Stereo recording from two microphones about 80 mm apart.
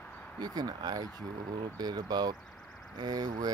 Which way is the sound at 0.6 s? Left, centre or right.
Right.